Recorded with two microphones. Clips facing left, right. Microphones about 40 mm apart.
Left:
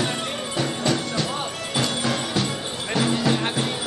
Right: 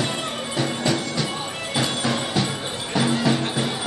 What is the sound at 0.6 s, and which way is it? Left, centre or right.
Music, centre.